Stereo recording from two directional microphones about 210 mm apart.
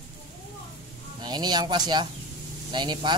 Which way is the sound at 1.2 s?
20° right (ahead or behind).